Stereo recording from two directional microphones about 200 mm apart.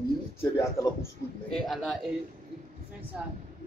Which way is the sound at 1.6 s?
Centre (ahead or behind).